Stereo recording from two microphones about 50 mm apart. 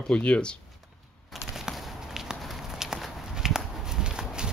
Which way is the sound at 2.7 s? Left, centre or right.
Centre.